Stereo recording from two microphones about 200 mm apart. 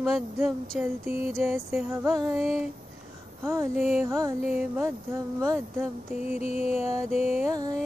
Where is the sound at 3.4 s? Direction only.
15° right (ahead or behind).